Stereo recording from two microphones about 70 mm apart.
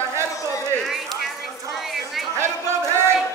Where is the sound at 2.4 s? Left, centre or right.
Right.